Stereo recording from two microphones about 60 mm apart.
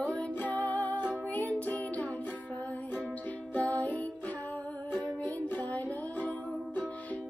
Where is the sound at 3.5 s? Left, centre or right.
Left.